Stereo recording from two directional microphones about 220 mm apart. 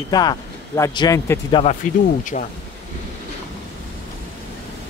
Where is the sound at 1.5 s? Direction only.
30° left (ahead or behind).